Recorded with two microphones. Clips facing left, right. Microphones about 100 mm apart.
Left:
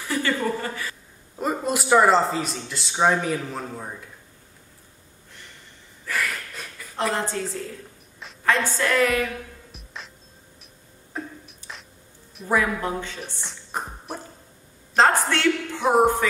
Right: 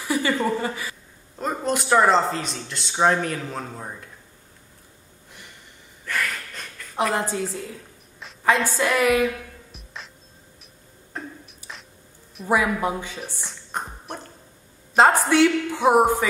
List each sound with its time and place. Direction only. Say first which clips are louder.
0.1 s a sound: right 2 dB; 15° right (ahead or behind)
0.6 s a woman's voice: right 3 dB; 15° right (ahead or behind)
1.4 s a man's voice: even; 5° left (ahead or behind)
6.0 s a sound: even; centre (ahead or behind)
7.0 s a woman's voice: right 2 dB; 10° right (ahead or behind)
8.5 s a woman's voice: right 2 dB; 10° right (ahead or behind)
9.7 s music: even; centre (ahead or behind)
11.1 s beatboxing: left 1 dB; centre (ahead or behind)
12.4 s a woman's voice: right 2 dB; 10° right (ahead or behind)
13.2 s music: right 1 dB; centre (ahead or behind)
15.0 s a woman's voice: right 4 dB; 10° right (ahead or behind)